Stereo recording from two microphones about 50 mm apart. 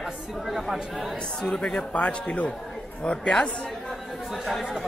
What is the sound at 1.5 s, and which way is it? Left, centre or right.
Speech, centre.